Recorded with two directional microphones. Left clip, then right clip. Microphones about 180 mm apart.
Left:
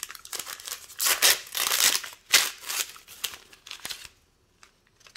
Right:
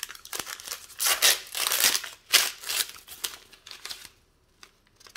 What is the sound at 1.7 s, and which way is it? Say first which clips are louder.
Crumpling: left 1 dB; centre (ahead or behind).